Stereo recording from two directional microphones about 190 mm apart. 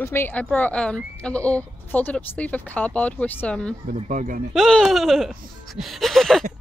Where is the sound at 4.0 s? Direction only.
40° right (ahead or behind).